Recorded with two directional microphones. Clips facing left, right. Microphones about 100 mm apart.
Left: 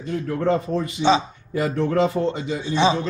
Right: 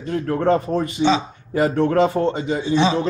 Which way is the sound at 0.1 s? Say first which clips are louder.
Right 3 dB; 60° right (ahead or behind).